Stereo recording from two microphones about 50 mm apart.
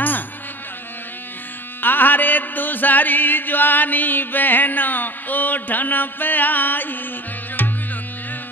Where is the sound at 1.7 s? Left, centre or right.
Left.